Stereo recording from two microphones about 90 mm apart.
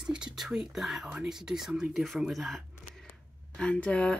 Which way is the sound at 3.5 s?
15° left (ahead or behind).